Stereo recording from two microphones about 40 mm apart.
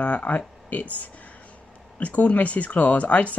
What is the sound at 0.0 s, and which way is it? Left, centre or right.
Speech, left.